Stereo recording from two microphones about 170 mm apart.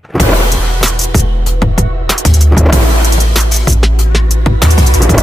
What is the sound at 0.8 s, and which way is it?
Music, centre (ahead or behind).